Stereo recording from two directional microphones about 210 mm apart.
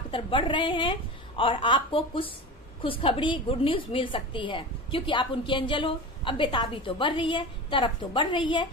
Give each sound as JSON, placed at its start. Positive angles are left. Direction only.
{"t": 0.1, "sound": "a woman's voice", "side_deg": 25}